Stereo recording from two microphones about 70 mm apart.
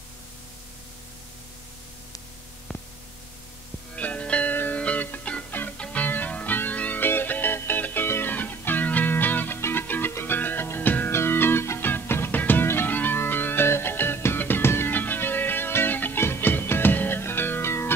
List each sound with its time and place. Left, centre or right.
2.7 s static: centre
3.9 s music: centre; by 17.9 s left